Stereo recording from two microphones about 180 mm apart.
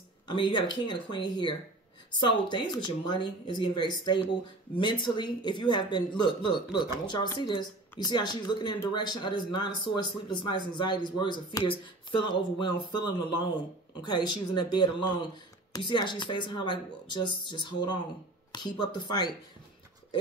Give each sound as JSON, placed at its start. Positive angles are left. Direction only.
{"t": 0.3, "sound": "speech", "side_deg": 25}